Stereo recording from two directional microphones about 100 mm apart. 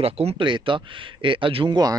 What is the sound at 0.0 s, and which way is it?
Speech, 90° right.